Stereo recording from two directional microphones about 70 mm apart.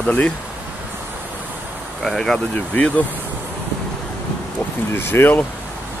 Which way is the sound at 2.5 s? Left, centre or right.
Centre.